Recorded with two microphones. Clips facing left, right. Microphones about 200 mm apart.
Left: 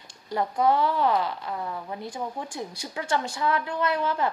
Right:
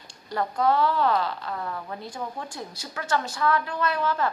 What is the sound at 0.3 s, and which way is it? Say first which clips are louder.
A woman's voice: left 1 dB; 15° left (ahead or behind).